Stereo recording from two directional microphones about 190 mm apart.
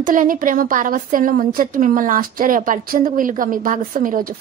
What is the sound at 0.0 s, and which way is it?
A woman's voice, 45° right (ahead or behind).